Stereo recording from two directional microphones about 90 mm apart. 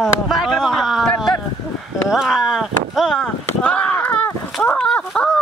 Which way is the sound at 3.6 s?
15° left (ahead or behind).